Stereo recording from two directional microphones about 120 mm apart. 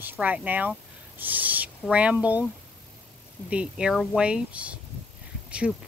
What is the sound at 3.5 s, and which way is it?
Speech, 10° right (ahead or behind).